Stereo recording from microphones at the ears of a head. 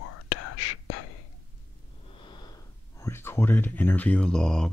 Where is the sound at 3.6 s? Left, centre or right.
Centre.